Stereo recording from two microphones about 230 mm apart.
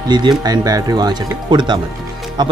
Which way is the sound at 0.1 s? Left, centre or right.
Centre.